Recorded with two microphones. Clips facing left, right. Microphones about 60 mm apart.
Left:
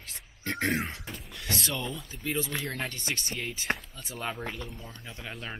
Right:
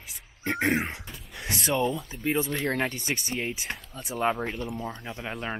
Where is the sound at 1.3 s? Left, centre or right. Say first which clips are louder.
Right 1 dB; right.